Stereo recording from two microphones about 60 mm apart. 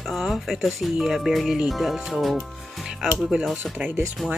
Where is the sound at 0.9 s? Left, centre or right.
Centre.